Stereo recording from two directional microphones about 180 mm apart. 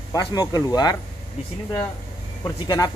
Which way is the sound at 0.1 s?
20° left (ahead or behind).